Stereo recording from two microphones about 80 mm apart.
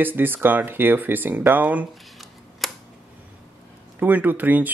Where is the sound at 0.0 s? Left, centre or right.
Right.